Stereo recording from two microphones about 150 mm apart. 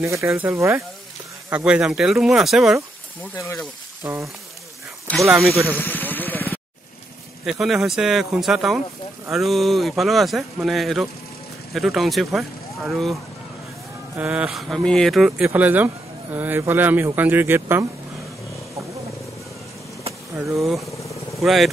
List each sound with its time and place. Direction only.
0.0 s speech: 20° right (ahead or behind)
1.5 s speech: 5° right (ahead or behind)
4.0 s speech: 20° right (ahead or behind)
5.3 s speech: centre (ahead or behind)
5.7 s a sound: 10° left (ahead or behind)
7.4 s speech: centre (ahead or behind)
14.1 s speech: 10° right (ahead or behind)
20.3 s speech: 20° right (ahead or behind)
21.4 s speech: centre (ahead or behind)